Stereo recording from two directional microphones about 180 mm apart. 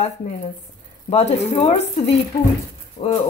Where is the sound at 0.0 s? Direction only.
45° left (ahead or behind).